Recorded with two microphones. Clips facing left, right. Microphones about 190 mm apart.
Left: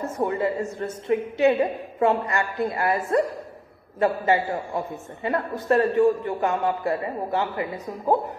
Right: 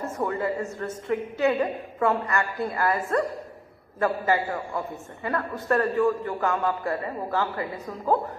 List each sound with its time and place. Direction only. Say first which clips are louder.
0.0 s a woman's voice: left 3 dB; 20° left (ahead or behind)